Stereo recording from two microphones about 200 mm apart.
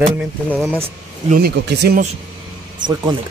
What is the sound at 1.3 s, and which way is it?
Speech, 55° right (ahead or behind).